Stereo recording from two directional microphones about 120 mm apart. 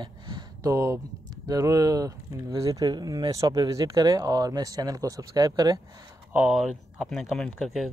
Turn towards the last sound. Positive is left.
turn(degrees=0)  # may be behind; listen again after turning